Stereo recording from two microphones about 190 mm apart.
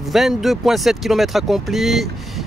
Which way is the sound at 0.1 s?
Centre (ahead or behind).